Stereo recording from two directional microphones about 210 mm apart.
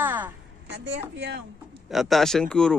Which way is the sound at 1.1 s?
55° right (ahead or behind).